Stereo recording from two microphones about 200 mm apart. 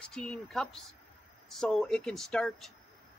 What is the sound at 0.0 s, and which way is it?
Speech, 5° left (ahead or behind).